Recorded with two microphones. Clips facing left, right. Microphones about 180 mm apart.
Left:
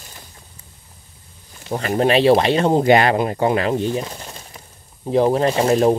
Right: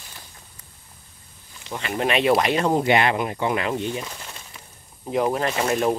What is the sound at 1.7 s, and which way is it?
Speech, 40° left (ahead or behind).